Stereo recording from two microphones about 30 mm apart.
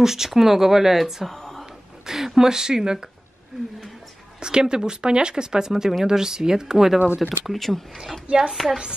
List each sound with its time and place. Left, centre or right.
0.0 s speech: centre
1.2 s a sound: centre
2.0 s a sound: centre
2.3 s speech: centre
5.7 s speech: centre
7.2 s speech: centre
7.5 s speech: centre